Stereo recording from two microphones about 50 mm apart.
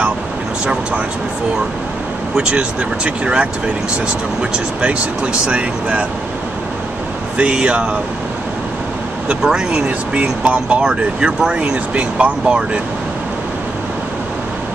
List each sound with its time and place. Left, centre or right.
2.3 s speech: centre
7.3 s speech: right
9.4 s speech: centre
9.8 s speech: right
10.9 s speech: centre